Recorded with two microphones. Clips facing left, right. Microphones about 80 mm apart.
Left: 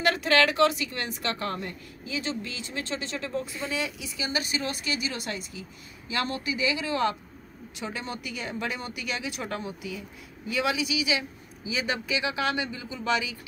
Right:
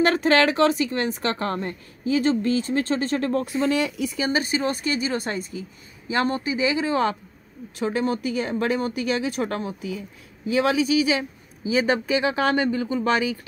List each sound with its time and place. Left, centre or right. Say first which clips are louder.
0.0 s a woman's voice: right 5 dB; right